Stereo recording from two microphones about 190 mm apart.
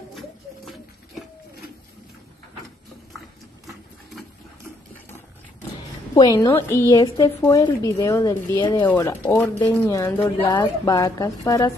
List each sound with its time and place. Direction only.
3.6 s sewing machine: centre (ahead or behind)
6.1 s a woman's voice: 20° left (ahead or behind)
8.8 s a woman's voice: 10° left (ahead or behind)